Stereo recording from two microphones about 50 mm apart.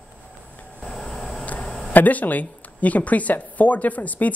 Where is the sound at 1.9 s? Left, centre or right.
Left.